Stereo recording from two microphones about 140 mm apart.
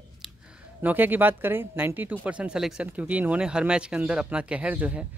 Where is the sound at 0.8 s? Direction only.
15° right (ahead or behind).